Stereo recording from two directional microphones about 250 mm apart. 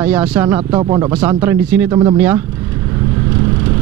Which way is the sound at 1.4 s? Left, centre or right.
Centre.